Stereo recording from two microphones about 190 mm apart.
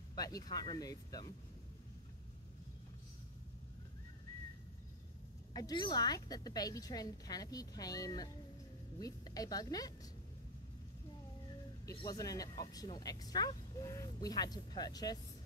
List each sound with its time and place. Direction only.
0.1 s speech: 20° left (ahead or behind)
5.5 s speech: 20° left (ahead or behind)
12.0 s speech: 20° left (ahead or behind)